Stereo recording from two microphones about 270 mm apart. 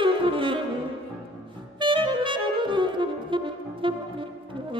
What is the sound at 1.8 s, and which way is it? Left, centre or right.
Saxophone, centre.